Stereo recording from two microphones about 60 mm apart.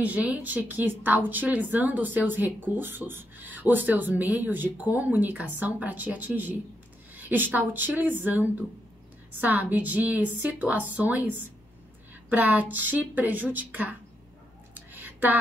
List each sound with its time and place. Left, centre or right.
0.0 s a woman's voice: right
12.3 s a woman's voice: right
14.7 s a sound: right